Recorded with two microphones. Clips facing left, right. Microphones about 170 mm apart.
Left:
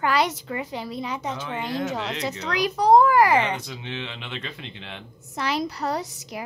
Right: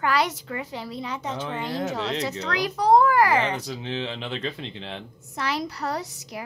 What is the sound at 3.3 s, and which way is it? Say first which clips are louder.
Speech: left 1 dB; 40° right (ahead or behind).